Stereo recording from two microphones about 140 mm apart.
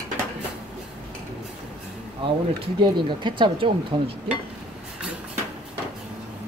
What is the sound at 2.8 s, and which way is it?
Speech, 35° right (ahead or behind).